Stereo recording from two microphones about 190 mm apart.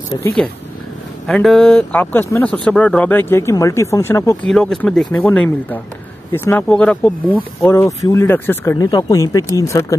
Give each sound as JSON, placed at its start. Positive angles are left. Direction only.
{"t": 0.1, "sound": "speech", "side_deg": 25}
{"t": 1.2, "sound": "speech", "side_deg": 0}
{"t": 4.5, "sound": "speech", "side_deg": 5}